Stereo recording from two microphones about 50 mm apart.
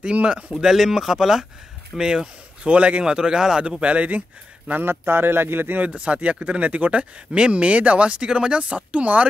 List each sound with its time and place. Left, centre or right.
0.0 s speech: right
0.6 s speech: centre
3.8 s speech: right
4.6 s speech: right
5.9 s speech: right